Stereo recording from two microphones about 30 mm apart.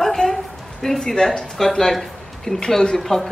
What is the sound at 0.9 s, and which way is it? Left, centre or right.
Speech, left.